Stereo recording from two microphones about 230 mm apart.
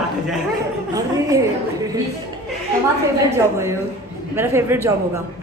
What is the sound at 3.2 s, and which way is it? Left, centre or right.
A woman's voice, centre.